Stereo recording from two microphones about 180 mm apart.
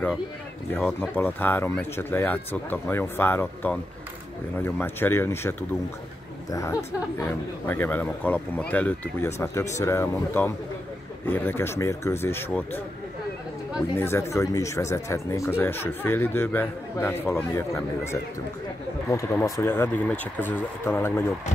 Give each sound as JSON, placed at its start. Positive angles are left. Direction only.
{"t": 0.7, "sound": "speech", "side_deg": 10}
{"t": 13.9, "sound": "speech", "side_deg": 15}